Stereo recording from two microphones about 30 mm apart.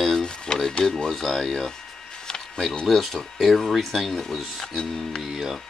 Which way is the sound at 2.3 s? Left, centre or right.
Centre.